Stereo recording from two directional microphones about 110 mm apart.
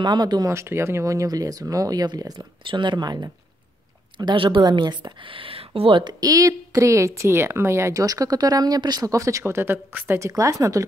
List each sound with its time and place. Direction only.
0.0 s speech: 40° right (ahead or behind)
0.5 s speech: 25° right (ahead or behind)
2.6 s speech: 45° right (ahead or behind)
6.2 s speech: 30° right (ahead or behind)